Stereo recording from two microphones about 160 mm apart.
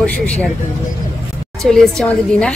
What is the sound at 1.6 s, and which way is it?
Speech, 5° left (ahead or behind).